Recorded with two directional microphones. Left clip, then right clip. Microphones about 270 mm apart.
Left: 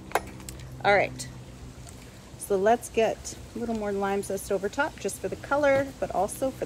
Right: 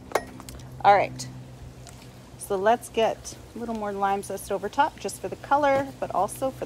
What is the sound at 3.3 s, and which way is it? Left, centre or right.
Speech, centre.